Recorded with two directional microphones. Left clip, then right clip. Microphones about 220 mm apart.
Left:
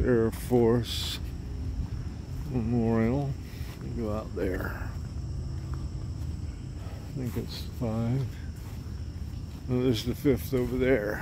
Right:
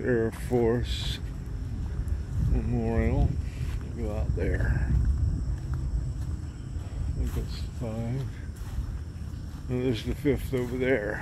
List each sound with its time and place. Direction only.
0.0 s speech: 20° left (ahead or behind)
2.5 s speech: 30° left (ahead or behind)
7.8 s speech: 35° left (ahead or behind)
9.7 s speech: 25° left (ahead or behind)